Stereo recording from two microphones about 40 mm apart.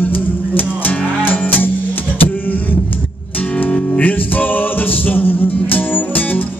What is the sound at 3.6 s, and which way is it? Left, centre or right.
Music, left.